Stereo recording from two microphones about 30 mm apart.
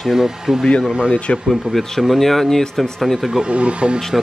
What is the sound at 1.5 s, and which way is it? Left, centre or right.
Speech, centre.